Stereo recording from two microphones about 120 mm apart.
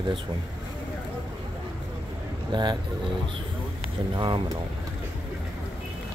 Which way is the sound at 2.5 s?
35° right (ahead or behind).